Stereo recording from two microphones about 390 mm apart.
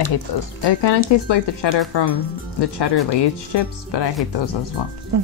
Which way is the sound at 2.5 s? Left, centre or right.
Left.